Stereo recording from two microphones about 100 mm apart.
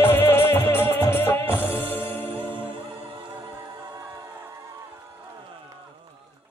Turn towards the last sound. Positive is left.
turn(degrees=-35)  # may be behind; listen again after turning